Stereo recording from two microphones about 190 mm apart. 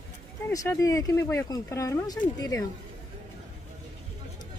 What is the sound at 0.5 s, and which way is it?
Speech, 15° left (ahead or behind).